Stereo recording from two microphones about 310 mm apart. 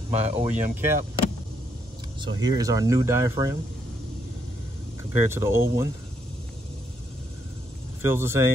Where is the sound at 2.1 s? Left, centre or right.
Centre.